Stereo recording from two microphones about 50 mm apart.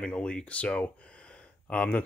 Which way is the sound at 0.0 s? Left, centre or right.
Left.